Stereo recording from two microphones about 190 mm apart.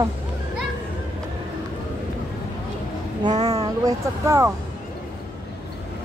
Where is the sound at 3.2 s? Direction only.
20° right (ahead or behind).